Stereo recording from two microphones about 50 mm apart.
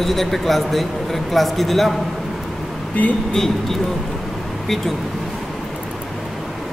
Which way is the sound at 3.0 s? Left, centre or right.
Left.